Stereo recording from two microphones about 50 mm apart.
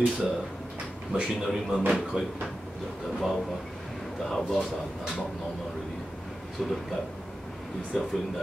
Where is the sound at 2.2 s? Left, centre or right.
Centre.